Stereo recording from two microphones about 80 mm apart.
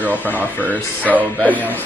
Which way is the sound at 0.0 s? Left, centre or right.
Right.